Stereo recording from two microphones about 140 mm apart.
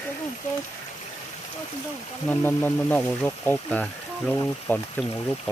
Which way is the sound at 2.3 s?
15° left (ahead or behind).